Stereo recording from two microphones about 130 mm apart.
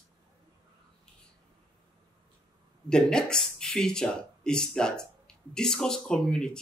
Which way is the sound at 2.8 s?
5° left (ahead or behind).